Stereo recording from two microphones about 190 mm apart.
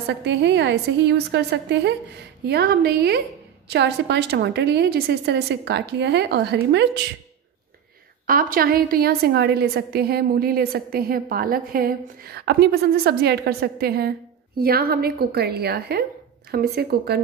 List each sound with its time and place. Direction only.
0.2 s a woman's voice: 65° right (ahead or behind)
8.3 s a woman's voice: 50° right (ahead or behind)